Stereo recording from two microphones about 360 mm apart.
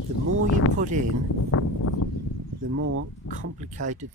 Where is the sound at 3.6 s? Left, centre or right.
Centre.